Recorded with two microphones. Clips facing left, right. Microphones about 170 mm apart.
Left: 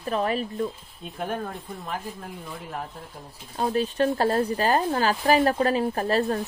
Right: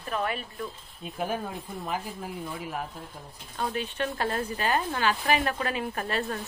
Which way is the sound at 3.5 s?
35° left (ahead or behind).